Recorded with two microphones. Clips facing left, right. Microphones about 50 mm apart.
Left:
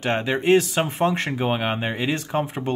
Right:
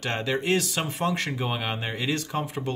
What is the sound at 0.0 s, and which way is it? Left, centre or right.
Speech, left.